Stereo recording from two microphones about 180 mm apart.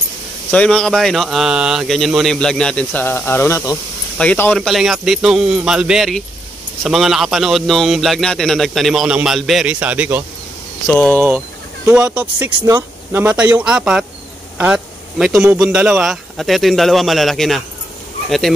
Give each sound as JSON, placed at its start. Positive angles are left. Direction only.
{"t": 0.5, "sound": "a man's voice", "side_deg": 5}
{"t": 12.5, "sound": "a man's voice", "side_deg": -20}